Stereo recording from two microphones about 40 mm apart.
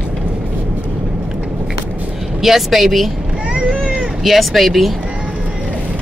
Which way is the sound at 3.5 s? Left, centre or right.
Right.